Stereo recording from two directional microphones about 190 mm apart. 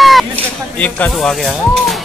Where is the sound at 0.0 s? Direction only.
Centre (ahead or behind).